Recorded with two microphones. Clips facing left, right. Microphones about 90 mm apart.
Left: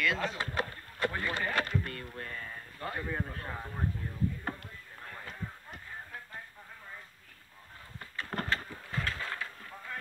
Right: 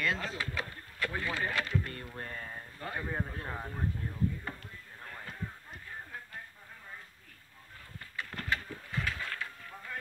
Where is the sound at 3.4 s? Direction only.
5° right (ahead or behind).